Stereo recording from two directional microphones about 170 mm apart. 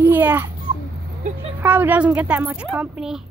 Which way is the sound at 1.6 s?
10° right (ahead or behind).